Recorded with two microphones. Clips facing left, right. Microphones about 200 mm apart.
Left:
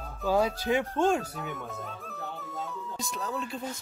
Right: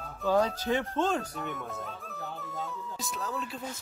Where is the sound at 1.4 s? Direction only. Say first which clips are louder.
Even; centre (ahead or behind).